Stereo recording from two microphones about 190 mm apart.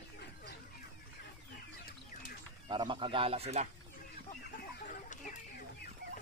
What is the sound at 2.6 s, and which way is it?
A man's voice, 25° right (ahead or behind).